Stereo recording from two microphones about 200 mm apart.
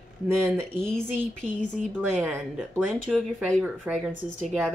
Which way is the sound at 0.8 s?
5° left (ahead or behind).